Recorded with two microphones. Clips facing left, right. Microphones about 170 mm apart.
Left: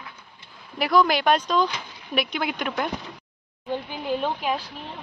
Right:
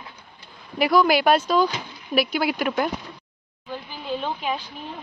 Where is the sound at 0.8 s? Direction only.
5° right (ahead or behind).